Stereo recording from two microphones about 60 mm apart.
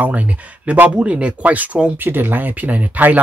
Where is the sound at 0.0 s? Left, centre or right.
Right.